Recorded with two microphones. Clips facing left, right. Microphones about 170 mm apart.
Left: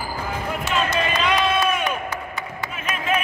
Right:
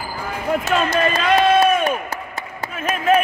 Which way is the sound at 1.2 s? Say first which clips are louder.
Right 7 dB; 45° right (ahead or behind).